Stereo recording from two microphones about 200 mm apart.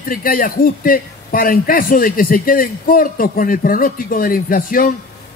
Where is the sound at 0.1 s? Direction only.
45° left (ahead or behind).